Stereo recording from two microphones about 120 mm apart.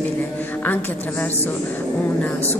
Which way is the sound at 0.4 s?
15° left (ahead or behind).